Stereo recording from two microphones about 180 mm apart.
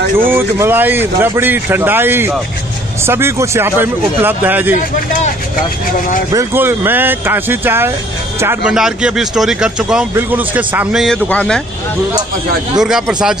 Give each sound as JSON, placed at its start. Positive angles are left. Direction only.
{"t": 0.3, "sound": "speech", "side_deg": -10}
{"t": 4.7, "sound": "speech", "side_deg": 45}
{"t": 6.3, "sound": "speech", "side_deg": -15}
{"t": 8.7, "sound": "speech", "side_deg": -5}
{"t": 12.7, "sound": "speech", "side_deg": -5}